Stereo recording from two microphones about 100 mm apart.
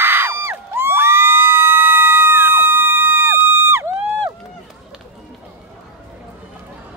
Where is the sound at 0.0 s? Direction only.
20° right (ahead or behind).